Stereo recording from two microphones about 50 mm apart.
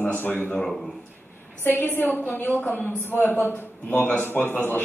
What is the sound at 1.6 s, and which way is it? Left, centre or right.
A woman's voice, left.